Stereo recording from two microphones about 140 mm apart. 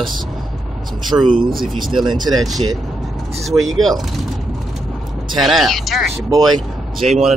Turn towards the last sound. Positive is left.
turn(degrees=0)  # may be behind; listen again after turning